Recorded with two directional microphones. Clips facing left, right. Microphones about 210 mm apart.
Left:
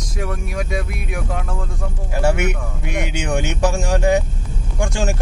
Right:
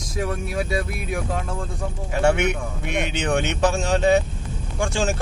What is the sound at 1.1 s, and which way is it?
Speech, 5° left (ahead or behind).